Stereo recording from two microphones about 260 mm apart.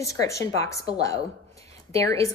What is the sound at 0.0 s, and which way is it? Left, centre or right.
Speech, centre.